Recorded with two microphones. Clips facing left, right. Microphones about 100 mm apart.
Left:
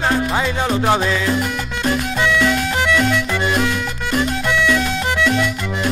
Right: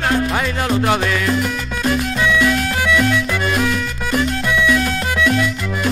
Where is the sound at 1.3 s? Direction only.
5° left (ahead or behind).